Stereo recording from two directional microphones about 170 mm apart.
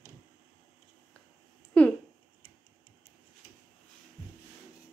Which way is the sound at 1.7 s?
5° left (ahead or behind).